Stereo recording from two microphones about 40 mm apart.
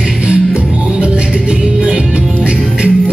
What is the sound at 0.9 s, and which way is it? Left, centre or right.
Music, right.